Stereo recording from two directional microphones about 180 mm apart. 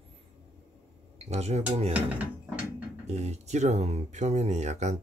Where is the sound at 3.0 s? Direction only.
35° right (ahead or behind).